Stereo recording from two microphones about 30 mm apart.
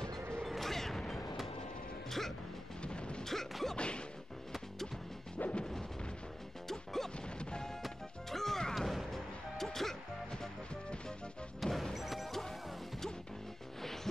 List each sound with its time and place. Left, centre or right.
0.4 s music: centre
2.8 s music: left
3.7 s whack: left
5.4 s music: left
6.7 s smash: centre
8.3 s music: centre
8.7 s music: centre
11.6 s music: centre
12.3 s music: centre